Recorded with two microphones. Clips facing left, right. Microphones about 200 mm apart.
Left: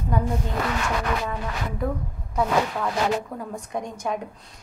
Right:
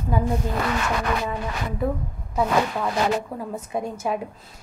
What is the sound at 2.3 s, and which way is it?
A woman's voice, 5° right (ahead or behind).